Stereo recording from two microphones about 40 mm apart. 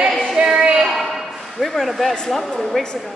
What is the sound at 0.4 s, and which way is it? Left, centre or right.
Music, right.